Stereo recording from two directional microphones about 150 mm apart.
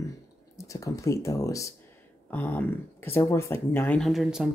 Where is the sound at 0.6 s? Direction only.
20° left (ahead or behind).